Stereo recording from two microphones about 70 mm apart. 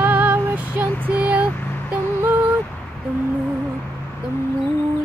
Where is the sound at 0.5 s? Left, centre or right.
Right.